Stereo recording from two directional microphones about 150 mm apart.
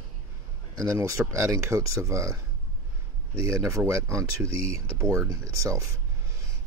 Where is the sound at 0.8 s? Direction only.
20° right (ahead or behind).